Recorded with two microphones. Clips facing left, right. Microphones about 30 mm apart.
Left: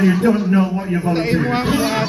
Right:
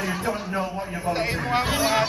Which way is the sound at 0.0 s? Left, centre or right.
Centre.